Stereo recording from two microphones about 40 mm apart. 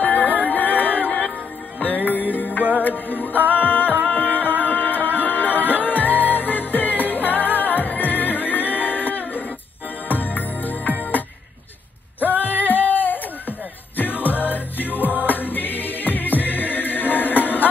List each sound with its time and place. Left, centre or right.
0.0 s music: left
12.3 s music: left